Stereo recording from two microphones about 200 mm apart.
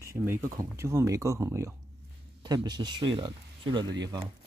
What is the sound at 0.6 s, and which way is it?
Speech, 15° right (ahead or behind).